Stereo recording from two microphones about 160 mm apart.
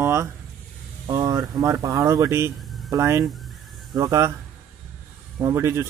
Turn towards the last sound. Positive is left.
turn(degrees=-15)  # may be behind; listen again after turning